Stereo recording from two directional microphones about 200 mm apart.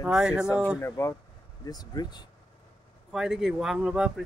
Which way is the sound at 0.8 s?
15° left (ahead or behind).